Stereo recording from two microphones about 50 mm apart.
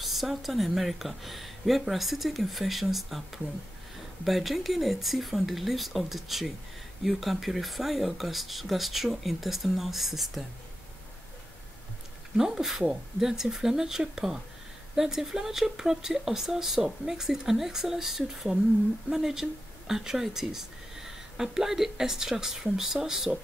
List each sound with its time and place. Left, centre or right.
0.0 s speech: centre
12.4 s speech: centre